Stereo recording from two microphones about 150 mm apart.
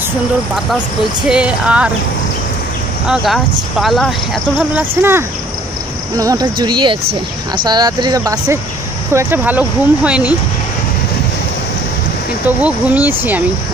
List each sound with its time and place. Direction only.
1.2 s speech: 5° right (ahead or behind)
3.1 s speech: centre (ahead or behind)
4.7 s speech: 15° right (ahead or behind)
12.6 s speech: 10° right (ahead or behind)